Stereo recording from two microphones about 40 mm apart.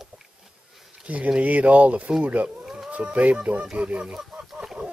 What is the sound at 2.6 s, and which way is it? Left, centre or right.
Livestock, centre.